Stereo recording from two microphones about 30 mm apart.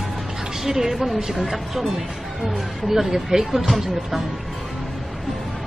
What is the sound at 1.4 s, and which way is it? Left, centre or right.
Speech, centre.